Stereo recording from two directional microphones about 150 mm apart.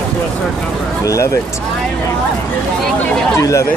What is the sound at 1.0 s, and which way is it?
Speech, 20° left (ahead or behind).